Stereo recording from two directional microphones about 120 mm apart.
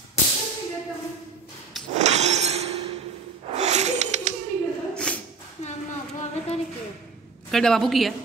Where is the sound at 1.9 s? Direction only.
70° right (ahead or behind).